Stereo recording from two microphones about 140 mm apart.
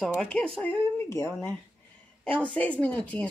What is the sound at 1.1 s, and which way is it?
A woman's voice, 20° left (ahead or behind).